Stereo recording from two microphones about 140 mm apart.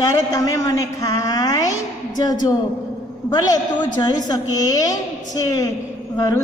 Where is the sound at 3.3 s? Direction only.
30° left (ahead or behind).